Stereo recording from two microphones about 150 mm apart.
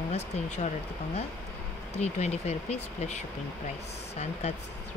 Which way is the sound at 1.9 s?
50° left (ahead or behind).